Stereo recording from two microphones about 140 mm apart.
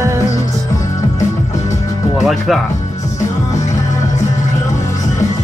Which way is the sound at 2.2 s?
Centre (ahead or behind).